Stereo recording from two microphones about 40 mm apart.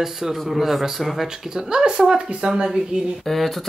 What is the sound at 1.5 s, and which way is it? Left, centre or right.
A woman's voice, right.